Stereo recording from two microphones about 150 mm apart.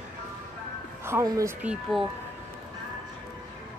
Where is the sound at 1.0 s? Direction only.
20° right (ahead or behind).